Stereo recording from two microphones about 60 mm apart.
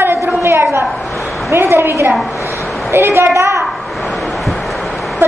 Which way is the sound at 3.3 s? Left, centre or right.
Right.